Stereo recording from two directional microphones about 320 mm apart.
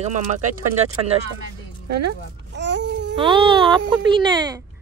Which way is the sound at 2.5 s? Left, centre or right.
Right.